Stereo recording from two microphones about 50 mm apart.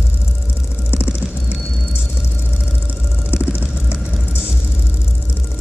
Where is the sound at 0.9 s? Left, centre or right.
Right.